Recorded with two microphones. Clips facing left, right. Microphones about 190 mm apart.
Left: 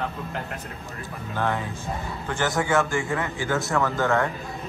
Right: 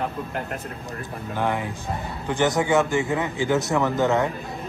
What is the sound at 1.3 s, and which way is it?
Speech, 15° right (ahead or behind).